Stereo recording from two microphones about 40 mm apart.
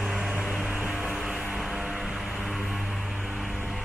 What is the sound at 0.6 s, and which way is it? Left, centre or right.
Music, right.